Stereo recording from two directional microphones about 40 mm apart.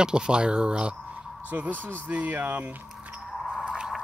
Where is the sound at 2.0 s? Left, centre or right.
Right.